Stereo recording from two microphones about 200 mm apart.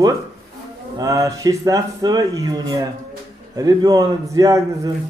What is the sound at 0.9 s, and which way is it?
Speech, 15° right (ahead or behind).